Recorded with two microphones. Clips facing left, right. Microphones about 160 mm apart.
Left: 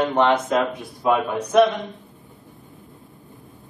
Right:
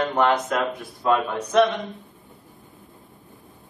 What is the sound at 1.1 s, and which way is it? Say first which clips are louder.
Speech: left 2 dB; 5° left (ahead or behind).